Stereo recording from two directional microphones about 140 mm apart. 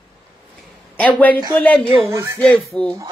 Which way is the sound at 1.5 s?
10° left (ahead or behind).